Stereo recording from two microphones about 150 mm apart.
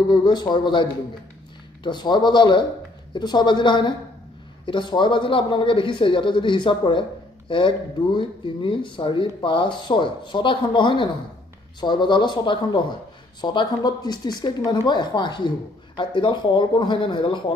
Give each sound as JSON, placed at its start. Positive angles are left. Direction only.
{"t": 0.1, "sound": "a man's voice", "side_deg": 30}